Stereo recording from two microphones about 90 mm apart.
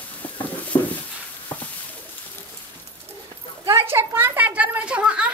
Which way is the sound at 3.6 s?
30° right (ahead or behind).